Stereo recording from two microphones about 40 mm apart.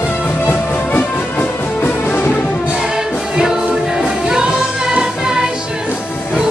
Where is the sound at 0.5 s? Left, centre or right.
Left.